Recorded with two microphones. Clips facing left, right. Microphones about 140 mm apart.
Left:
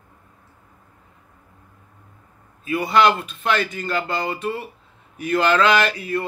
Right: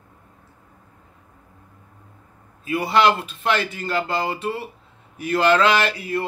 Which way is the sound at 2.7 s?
30° right (ahead or behind).